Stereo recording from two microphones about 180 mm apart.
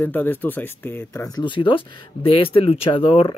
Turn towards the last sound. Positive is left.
turn(degrees=30)  # may be behind; listen again after turning